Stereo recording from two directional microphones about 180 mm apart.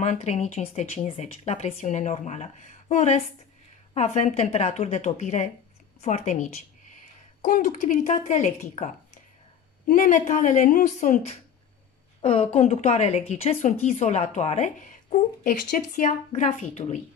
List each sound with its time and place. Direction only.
0.0 s a woman's voice: 40° left (ahead or behind)
12.2 s a woman's voice: 30° left (ahead or behind)